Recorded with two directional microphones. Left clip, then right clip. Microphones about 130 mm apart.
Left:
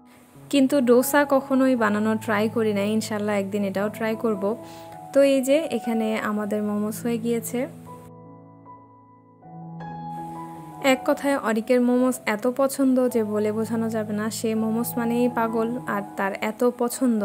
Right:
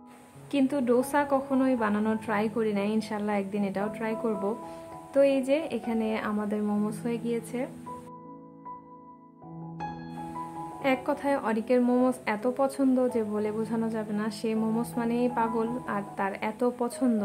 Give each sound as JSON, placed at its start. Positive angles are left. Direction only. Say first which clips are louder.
{"t": 0.5, "sound": "a woman's voice", "louder": "left 7 dB", "side_deg": 40}
{"t": 10.8, "sound": "a woman's voice", "louder": "left 7 dB", "side_deg": 30}